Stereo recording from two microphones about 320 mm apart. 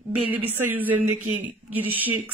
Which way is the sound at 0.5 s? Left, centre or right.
Right.